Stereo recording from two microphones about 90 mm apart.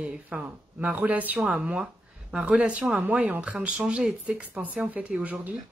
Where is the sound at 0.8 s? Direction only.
20° right (ahead or behind).